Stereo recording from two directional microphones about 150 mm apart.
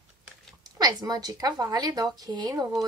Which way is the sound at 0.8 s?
25° right (ahead or behind).